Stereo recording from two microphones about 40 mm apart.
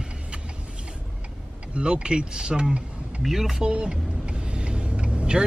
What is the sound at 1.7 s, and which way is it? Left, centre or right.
Speech, right.